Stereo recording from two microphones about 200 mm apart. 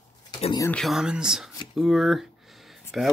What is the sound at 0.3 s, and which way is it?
Speech, 20° left (ahead or behind).